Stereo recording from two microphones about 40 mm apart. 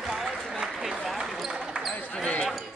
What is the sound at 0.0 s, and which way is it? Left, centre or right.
Applause, centre.